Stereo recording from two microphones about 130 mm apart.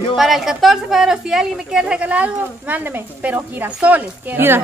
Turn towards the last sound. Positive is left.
turn(degrees=-15)  # may be behind; listen again after turning